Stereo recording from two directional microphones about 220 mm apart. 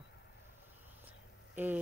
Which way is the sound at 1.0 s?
10° right (ahead or behind).